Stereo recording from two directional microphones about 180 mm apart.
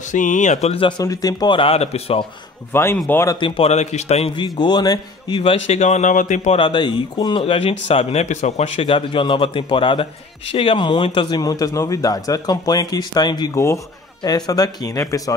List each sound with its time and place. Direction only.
0.1 s speech: 45° left (ahead or behind)
2.7 s speech: 15° left (ahead or behind)
3.3 s speech: 30° left (ahead or behind)
4.6 s speech: 25° left (ahead or behind)
5.7 s speech: 40° left (ahead or behind)
6.6 s speech: 25° left (ahead or behind)